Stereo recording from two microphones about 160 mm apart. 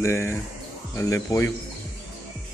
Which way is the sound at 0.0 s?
15° left (ahead or behind).